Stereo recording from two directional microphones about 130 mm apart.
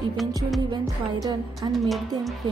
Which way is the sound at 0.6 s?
35° right (ahead or behind).